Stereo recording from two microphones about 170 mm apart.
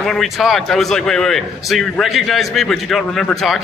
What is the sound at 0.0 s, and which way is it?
A man's voice, centre (ahead or behind).